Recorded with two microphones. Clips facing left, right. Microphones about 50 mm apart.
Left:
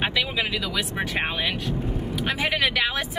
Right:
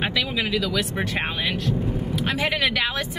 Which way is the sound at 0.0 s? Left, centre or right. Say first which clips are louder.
Even; centre.